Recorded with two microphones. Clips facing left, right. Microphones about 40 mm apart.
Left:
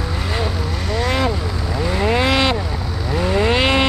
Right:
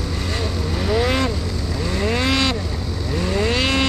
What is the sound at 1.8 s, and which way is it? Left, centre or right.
Vehicle, centre.